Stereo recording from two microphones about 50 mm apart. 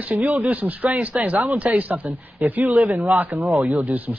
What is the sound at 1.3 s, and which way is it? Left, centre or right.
Speech, right.